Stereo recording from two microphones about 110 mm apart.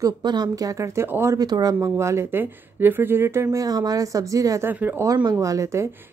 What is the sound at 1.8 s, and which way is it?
A woman's voice, 25° right (ahead or behind).